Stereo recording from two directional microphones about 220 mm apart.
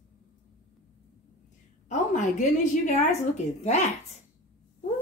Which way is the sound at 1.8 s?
35° left (ahead or behind).